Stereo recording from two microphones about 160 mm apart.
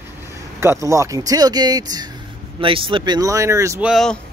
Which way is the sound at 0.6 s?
20° right (ahead or behind).